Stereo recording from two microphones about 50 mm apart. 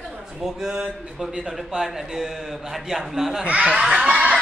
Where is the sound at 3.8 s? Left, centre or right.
Centre.